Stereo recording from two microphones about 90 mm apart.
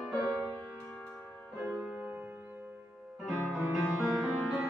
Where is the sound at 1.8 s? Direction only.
15° right (ahead or behind).